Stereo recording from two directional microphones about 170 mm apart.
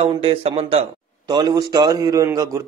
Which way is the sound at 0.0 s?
35° right (ahead or behind).